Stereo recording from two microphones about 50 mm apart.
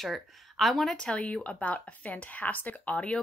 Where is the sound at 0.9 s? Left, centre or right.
Centre.